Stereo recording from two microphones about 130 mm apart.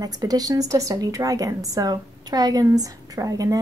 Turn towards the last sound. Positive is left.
turn(degrees=-25)  # may be behind; listen again after turning